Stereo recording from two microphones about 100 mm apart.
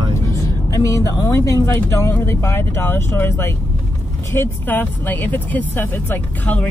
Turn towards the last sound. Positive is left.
turn(degrees=20)  # may be behind; listen again after turning